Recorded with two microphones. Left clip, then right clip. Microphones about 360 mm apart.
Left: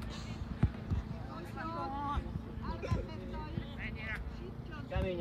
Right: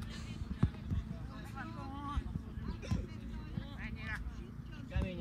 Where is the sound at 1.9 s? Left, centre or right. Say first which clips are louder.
Left 4 dB; centre.